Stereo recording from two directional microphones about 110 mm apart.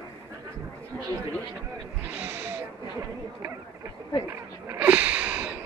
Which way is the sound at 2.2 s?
20° right (ahead or behind).